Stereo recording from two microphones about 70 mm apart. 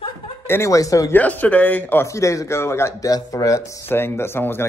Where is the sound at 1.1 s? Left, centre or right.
Left.